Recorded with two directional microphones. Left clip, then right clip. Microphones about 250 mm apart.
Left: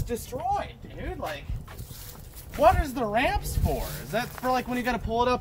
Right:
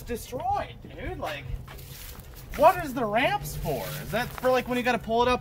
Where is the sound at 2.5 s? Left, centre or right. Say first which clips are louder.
Right 1 dB; centre.